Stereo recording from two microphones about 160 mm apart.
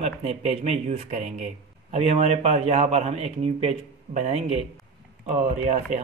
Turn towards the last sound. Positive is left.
turn(degrees=-45)  # may be behind; listen again after turning